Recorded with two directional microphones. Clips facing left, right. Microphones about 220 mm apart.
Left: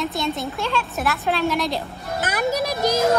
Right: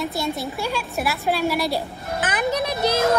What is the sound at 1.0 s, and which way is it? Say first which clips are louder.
Speech: even; 10° right (ahead or behind).